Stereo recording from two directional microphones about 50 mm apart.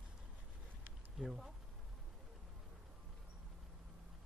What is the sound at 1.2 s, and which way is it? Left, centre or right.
Speech, centre.